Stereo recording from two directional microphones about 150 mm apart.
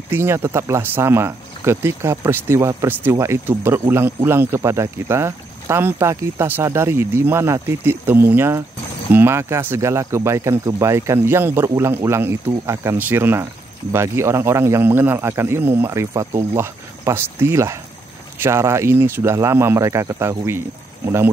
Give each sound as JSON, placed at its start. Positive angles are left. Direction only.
{"t": 0.1, "sound": "speech", "side_deg": -15}